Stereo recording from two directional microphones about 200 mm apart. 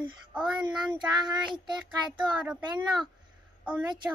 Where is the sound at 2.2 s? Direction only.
5° right (ahead or behind).